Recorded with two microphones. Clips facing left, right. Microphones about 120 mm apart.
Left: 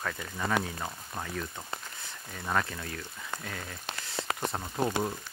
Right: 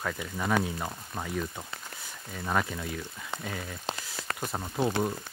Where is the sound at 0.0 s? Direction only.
10° right (ahead or behind).